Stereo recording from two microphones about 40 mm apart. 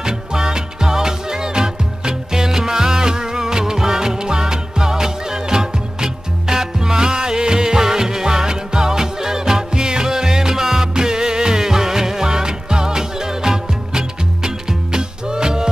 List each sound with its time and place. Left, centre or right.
0.0 s music: centre